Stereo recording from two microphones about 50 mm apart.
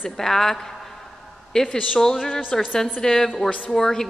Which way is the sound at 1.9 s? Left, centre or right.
Centre.